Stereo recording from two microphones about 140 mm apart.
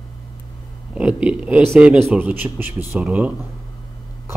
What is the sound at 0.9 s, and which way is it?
A man's voice, 10° right (ahead or behind).